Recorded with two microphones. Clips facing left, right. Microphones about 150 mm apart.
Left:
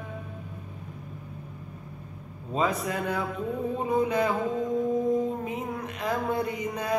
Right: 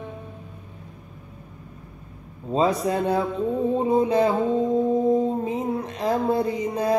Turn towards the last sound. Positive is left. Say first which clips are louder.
# right 6 dB
turn(degrees=-30)  # may be behind; listen again after turning